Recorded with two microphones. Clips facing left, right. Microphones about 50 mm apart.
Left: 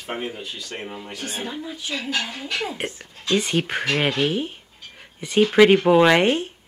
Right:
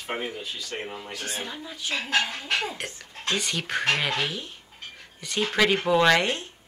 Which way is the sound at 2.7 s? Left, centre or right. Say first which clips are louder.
Left 5 dB; left.